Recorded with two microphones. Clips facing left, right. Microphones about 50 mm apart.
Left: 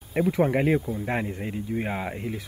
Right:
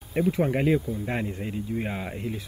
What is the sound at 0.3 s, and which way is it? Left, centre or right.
Speech, left.